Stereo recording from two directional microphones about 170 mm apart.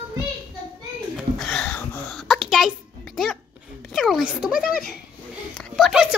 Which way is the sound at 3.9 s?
Centre (ahead or behind).